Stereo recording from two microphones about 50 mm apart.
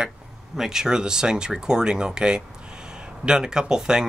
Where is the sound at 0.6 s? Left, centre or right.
Centre.